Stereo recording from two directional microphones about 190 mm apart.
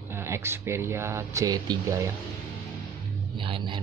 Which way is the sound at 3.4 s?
25° right (ahead or behind).